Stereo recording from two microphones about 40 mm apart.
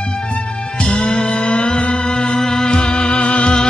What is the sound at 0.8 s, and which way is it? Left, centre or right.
Music, left.